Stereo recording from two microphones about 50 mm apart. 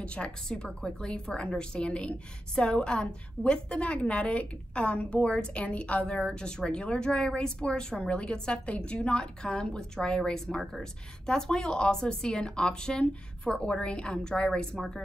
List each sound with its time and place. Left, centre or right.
0.0 s speech: left